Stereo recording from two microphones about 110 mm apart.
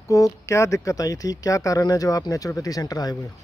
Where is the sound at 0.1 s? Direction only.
25° left (ahead or behind).